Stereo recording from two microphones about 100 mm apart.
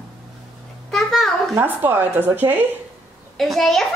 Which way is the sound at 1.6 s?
20° right (ahead or behind).